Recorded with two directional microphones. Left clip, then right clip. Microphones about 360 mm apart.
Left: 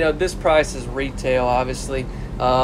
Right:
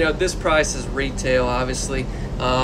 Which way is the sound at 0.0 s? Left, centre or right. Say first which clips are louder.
Left 1 dB; centre.